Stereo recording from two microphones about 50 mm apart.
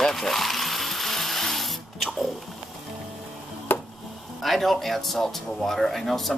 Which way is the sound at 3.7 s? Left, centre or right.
Left.